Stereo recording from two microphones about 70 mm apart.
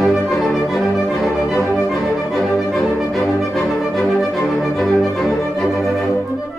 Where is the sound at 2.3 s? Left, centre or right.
Centre.